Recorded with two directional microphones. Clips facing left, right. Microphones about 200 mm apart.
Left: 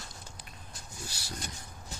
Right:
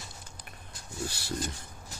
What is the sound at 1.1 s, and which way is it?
Speech, 60° right (ahead or behind).